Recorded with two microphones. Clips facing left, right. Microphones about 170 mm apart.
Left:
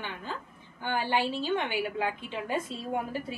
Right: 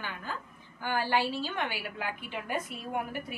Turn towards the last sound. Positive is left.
turn(degrees=25)  # may be behind; listen again after turning